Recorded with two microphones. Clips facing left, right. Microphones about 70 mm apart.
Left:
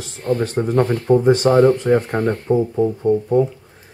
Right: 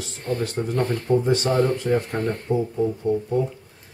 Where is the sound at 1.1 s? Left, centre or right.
Left.